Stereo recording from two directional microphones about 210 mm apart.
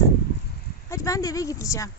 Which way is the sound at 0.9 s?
15° left (ahead or behind).